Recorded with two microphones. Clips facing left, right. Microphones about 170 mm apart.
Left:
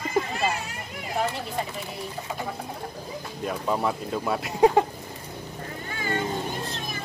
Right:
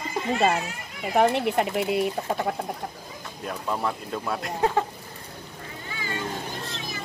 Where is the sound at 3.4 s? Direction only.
Centre (ahead or behind).